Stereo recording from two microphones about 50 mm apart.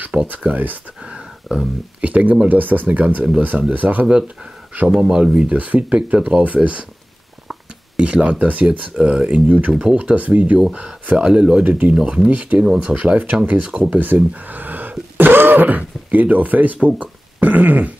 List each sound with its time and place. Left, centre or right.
0.4 s speech: right
1.0 s a sound: centre
2.0 s speech: right
5.0 s speech: centre
8.0 s speech: right
10.6 s speech: centre
11.6 s speech: right
11.9 s speech: centre; by 17.9 s right